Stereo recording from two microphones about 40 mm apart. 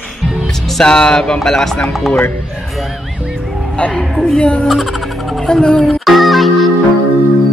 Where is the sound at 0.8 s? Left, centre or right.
Centre.